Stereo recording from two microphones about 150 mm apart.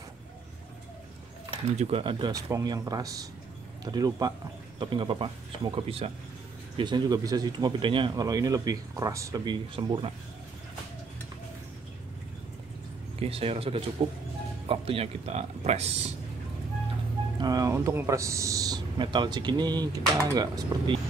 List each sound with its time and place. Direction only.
1.5 s speech: 40° right (ahead or behind)
6.8 s speech: 25° right (ahead or behind)
13.2 s speech: 40° right (ahead or behind)
17.4 s speech: 25° right (ahead or behind)